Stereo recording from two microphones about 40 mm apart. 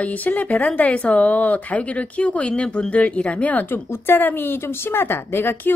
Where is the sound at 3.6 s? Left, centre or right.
Left.